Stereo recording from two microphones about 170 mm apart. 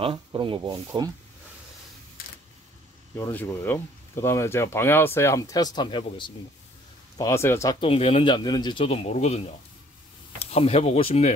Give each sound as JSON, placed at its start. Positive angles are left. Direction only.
{"t": 0.0, "sound": "speech", "side_deg": -30}
{"t": 3.2, "sound": "speech", "side_deg": 15}
{"t": 7.2, "sound": "speech", "side_deg": 15}
{"t": 7.8, "sound": "speech", "side_deg": 35}